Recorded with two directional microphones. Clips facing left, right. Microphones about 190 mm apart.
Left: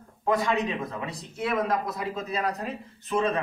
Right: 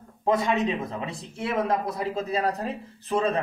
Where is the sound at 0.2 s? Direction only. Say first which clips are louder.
Right 2 dB; 20° right (ahead or behind).